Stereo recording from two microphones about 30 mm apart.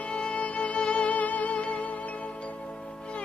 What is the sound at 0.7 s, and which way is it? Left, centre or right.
Music, left.